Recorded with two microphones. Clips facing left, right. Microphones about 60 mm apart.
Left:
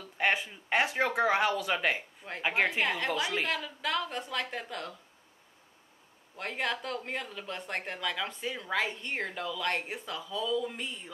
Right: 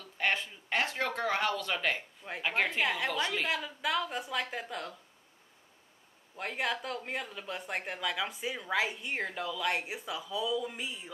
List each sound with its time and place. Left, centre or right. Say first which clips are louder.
0.0 s speech: left 3 dB; centre
2.8 s speech: left 1 dB; centre
3.1 s speech: left 1 dB; centre
3.4 s speech: even; centre
6.3 s speech: even; centre